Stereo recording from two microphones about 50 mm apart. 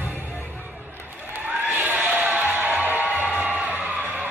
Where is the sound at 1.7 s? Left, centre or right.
Right.